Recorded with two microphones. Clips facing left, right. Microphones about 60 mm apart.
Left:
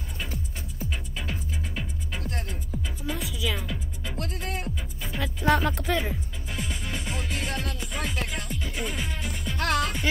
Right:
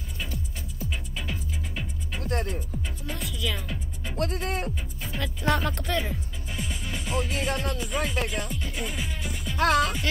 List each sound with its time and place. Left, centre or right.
1.3 s music: left
2.2 s music: right
2.7 s music: centre
4.2 s speech: right
5.0 s speech: centre